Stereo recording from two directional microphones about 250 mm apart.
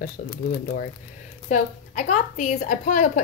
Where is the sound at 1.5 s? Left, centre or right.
Left.